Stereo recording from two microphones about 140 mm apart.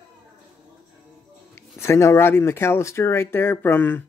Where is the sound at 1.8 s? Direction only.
20° left (ahead or behind).